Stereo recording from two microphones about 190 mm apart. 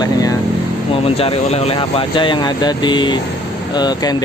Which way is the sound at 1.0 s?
30° left (ahead or behind).